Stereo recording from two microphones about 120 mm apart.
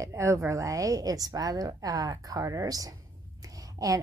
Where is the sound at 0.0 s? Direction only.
25° right (ahead or behind).